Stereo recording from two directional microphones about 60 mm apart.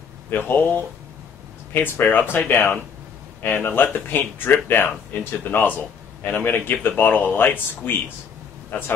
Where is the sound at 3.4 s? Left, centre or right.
Left.